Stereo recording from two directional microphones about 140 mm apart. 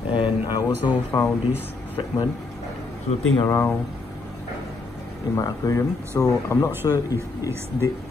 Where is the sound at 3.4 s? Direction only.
15° left (ahead or behind).